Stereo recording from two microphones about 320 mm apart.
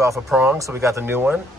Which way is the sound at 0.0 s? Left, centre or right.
Centre.